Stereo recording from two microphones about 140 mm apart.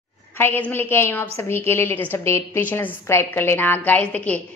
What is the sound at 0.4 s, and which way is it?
A woman's voice, 15° left (ahead or behind).